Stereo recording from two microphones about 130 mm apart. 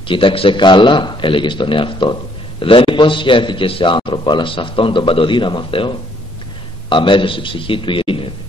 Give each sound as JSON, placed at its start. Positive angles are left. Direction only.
{"t": 0.1, "sound": "a man's voice", "side_deg": 45}